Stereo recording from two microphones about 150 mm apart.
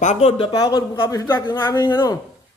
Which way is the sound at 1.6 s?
30° left (ahead or behind).